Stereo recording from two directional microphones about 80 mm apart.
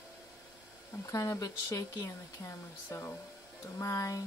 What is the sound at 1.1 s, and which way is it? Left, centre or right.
Speech, left.